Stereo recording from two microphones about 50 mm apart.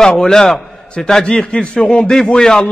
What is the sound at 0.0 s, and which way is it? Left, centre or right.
A man's voice, centre.